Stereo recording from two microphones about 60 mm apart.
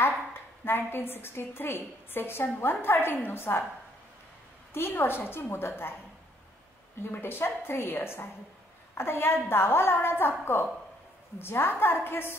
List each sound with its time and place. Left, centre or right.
0.9 s a woman's voice: left
4.7 s a woman's voice: left
7.0 s a woman's voice: left